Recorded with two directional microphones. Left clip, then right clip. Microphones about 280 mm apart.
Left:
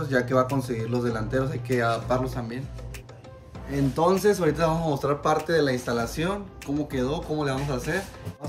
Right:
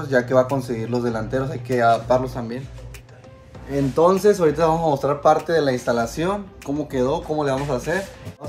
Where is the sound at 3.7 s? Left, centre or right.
Centre.